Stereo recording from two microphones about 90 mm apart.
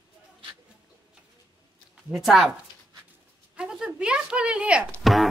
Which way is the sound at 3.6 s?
10° right (ahead or behind).